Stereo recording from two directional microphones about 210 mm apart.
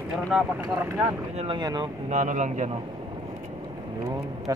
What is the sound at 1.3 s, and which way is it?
Speech, 25° right (ahead or behind).